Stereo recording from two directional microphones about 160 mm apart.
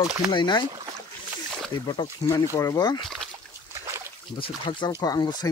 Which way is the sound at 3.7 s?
15° right (ahead or behind).